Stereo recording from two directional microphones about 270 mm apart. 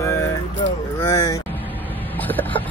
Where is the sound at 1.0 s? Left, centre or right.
Centre.